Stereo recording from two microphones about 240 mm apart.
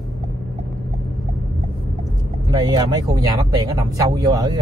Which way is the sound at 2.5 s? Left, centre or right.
Centre.